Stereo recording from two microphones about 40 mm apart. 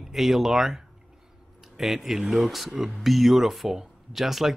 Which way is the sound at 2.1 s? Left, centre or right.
Centre.